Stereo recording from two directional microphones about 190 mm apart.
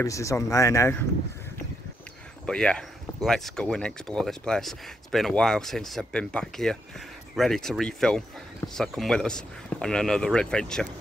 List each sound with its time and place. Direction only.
0.0 s speech: 15° left (ahead or behind)
2.4 s speech: 5° left (ahead or behind)